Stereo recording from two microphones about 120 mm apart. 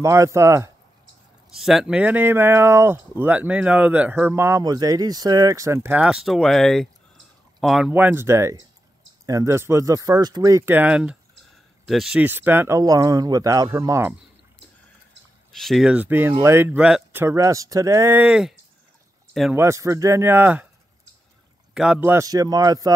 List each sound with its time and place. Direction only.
0.0 s speech: 25° right (ahead or behind)
1.5 s speech: 5° right (ahead or behind); by 5.9 s 25° right (ahead or behind)
5.9 s speech: 5° right (ahead or behind)
7.9 s speech: 15° right (ahead or behind)
12.2 s speech: 15° right (ahead or behind)
15.5 s speech: centre (ahead or behind)
16.0 s speech: 15° right (ahead or behind)
16.7 s speech: 10° right (ahead or behind)
17.2 s speech: 25° right (ahead or behind)
19.5 s speech: 20° right (ahead or behind)
21.7 s speech: 5° right (ahead or behind)
22.0 s speech: 20° right (ahead or behind)
22.3 s speech: 30° right (ahead or behind)